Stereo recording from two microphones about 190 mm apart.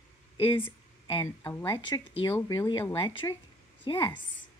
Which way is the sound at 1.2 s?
15° left (ahead or behind).